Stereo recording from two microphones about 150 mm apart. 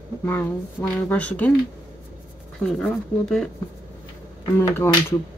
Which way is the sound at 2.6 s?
5° left (ahead or behind).